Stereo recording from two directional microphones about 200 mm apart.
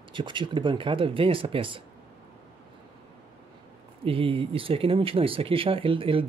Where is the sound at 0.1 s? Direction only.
25° right (ahead or behind).